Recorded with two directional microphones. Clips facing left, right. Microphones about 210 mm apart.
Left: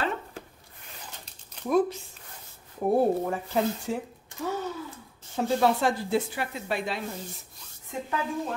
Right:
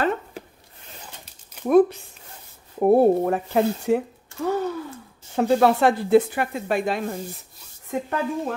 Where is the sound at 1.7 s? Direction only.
60° right (ahead or behind).